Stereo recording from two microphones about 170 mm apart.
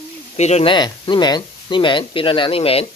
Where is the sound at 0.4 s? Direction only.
40° left (ahead or behind).